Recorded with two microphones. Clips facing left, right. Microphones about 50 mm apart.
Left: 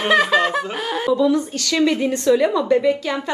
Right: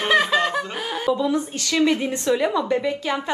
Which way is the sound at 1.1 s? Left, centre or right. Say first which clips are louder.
Left 4 dB; centre.